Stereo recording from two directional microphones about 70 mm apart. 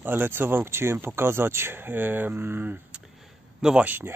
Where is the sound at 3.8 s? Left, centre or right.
Right.